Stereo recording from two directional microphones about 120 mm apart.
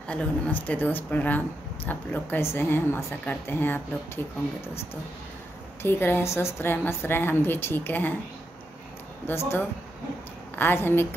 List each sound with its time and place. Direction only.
0.1 s a woman's voice: 15° left (ahead or behind)
5.8 s a woman's voice: 20° left (ahead or behind)
9.3 s a woman's voice: 20° left (ahead or behind)